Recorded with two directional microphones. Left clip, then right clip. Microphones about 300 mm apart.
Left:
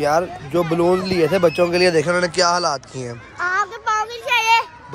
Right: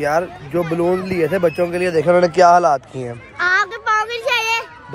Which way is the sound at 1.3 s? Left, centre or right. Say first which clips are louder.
Left 1 dB; centre.